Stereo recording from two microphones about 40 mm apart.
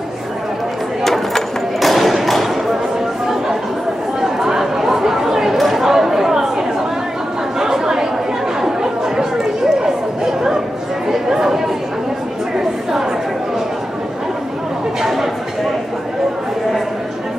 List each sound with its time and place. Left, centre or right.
1.0 s a sound: centre
4.2 s chatter: centre
7.5 s chatter: centre